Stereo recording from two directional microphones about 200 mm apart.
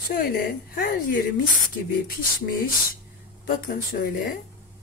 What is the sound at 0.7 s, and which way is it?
Speech, 45° left (ahead or behind).